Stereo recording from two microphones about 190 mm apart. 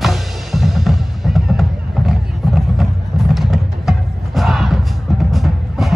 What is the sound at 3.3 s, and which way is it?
Music, centre (ahead or behind).